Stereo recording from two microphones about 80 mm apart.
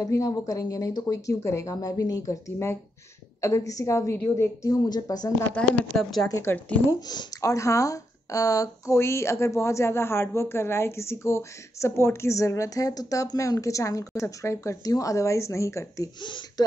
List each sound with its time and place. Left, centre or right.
0.0 s speech: left
4.8 s speech: left
5.6 s speech: centre
5.9 s speech: centre
6.4 s speech: left
6.9 s speech: left
7.5 s speech: left
16.2 s speech: left